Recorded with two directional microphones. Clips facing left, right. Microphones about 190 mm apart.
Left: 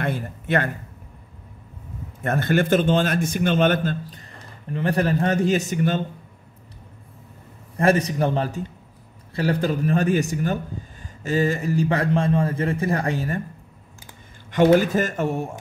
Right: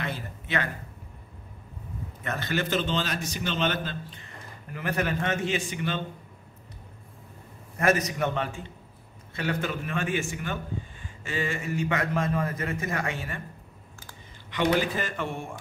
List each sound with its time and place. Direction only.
0.0 s a man's voice: 50° left (ahead or behind)
2.2 s a man's voice: 50° left (ahead or behind)
7.7 s a man's voice: 30° left (ahead or behind)
14.5 s a man's voice: 45° left (ahead or behind)